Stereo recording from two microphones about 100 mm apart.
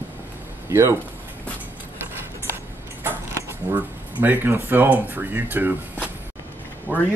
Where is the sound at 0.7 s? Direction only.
30° right (ahead or behind).